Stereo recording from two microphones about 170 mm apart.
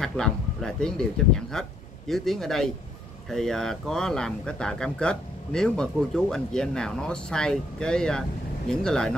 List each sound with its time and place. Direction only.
0.0 s speech: 5° left (ahead or behind)